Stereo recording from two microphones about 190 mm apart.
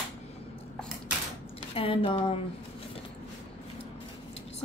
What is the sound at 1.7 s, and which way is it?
Speech, 30° left (ahead or behind).